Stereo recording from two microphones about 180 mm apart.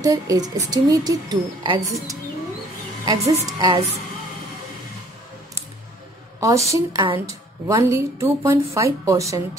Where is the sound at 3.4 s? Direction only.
25° right (ahead or behind).